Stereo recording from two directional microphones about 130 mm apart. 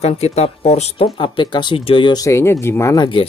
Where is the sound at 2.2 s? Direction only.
25° left (ahead or behind).